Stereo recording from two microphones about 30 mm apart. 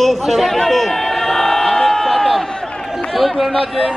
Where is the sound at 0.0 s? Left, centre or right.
Centre.